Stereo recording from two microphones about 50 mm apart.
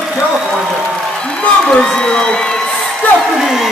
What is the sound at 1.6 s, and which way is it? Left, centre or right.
Speech, centre.